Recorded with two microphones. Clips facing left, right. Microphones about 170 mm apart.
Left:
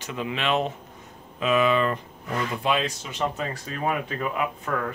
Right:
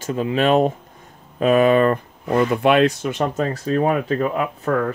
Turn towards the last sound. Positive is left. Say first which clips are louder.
# right 6 dB
turn(degrees=-40)  # may be behind; listen again after turning